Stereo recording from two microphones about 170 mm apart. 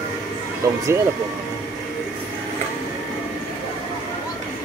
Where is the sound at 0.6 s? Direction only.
20° right (ahead or behind).